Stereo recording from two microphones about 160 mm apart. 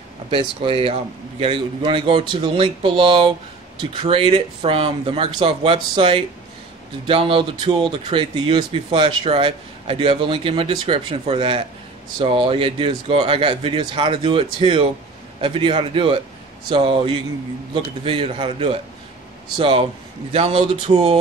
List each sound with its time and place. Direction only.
0.3 s speech: 35° right (ahead or behind)